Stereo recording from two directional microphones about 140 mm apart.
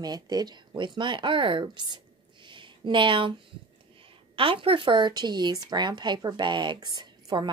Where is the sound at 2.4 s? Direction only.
35° right (ahead or behind).